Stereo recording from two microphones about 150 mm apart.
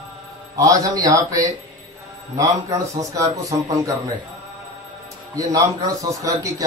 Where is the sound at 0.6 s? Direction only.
25° right (ahead or behind).